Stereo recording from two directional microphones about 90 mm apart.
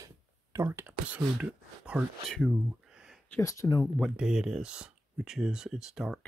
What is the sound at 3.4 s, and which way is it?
Speech, 40° left (ahead or behind).